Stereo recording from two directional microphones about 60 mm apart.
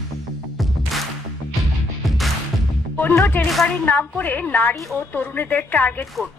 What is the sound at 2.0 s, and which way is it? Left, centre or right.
Music, centre.